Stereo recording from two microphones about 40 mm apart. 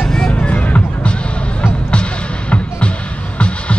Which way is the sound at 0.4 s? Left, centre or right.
Left.